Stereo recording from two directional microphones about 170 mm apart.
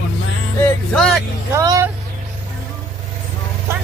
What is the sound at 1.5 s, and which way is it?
Vehicle, 20° right (ahead or behind).